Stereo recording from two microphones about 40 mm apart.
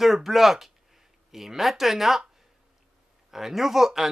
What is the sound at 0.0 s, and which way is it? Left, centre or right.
Speech, centre.